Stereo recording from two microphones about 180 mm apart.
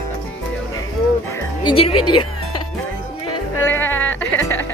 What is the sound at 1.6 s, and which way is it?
Speech, 30° left (ahead or behind).